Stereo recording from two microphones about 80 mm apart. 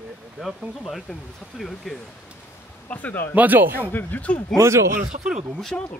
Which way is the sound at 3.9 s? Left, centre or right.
Left.